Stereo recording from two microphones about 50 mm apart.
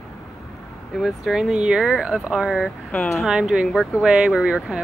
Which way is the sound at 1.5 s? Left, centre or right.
Centre.